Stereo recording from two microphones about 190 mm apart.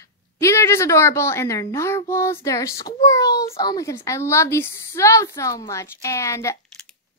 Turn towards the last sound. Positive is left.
turn(degrees=15)  # may be behind; listen again after turning